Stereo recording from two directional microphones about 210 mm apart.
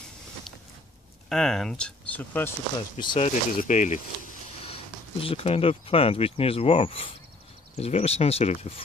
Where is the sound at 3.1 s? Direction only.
35° left (ahead or behind).